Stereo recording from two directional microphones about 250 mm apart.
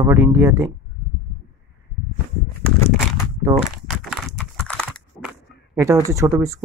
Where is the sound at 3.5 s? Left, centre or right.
Centre.